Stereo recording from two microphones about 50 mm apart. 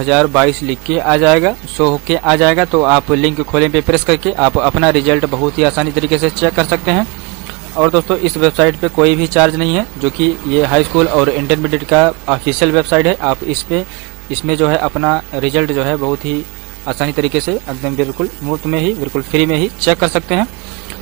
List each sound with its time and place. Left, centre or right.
0.0 s speech: centre